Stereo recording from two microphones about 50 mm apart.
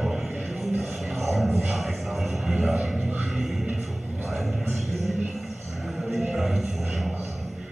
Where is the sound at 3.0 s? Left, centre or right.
Right.